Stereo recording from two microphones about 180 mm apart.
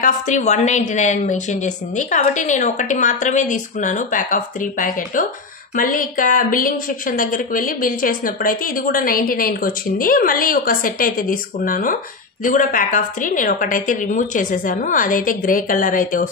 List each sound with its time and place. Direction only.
0.0 s a woman's voice: 40° left (ahead or behind)